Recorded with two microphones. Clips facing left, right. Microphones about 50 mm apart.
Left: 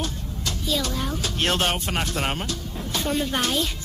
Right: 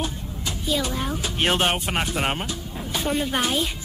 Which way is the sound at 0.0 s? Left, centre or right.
Centre.